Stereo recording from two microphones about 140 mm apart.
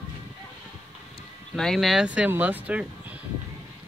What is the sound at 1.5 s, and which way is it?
Speech, centre (ahead or behind).